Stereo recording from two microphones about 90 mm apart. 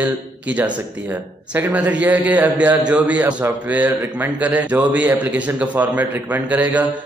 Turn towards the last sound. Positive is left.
turn(degrees=-15)  # may be behind; listen again after turning